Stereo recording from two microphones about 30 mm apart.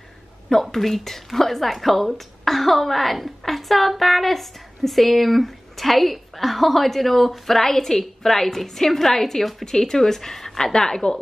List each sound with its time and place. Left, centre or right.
0.5 s a woman's voice: centre